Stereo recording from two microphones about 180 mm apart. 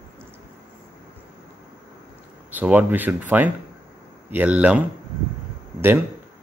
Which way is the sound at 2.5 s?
10° right (ahead or behind).